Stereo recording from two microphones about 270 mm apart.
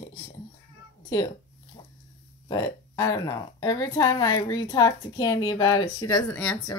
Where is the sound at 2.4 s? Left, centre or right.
Centre.